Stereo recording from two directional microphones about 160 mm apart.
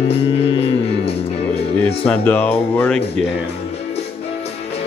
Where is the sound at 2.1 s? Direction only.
10° left (ahead or behind).